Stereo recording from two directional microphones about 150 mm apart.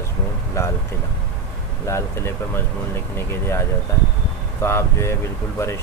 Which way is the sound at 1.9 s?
15° left (ahead or behind).